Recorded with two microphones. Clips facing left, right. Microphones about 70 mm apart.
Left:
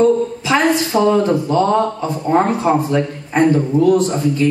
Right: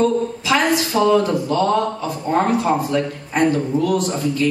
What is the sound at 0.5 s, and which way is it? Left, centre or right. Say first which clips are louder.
A man's voice: left 3 dB; left.